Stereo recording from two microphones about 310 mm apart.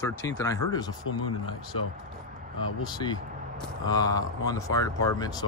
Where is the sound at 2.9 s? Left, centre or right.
Centre.